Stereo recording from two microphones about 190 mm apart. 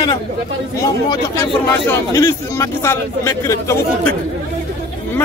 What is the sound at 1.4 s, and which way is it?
Speech, 15° left (ahead or behind).